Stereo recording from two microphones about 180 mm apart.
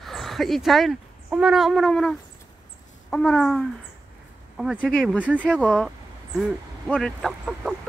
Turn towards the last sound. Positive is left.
turn(degrees=0)  # may be behind; listen again after turning